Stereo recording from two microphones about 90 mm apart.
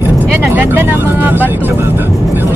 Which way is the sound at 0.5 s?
25° right (ahead or behind).